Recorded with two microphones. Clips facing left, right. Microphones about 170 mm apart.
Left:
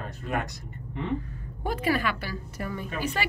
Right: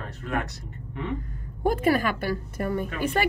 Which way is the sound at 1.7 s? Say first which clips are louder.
Right 4 dB; 45° right (ahead or behind).